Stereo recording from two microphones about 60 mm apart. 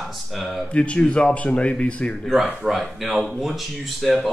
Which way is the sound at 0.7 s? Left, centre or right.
Centre.